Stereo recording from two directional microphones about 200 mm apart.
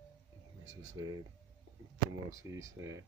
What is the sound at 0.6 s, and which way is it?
Speech, 75° right (ahead or behind).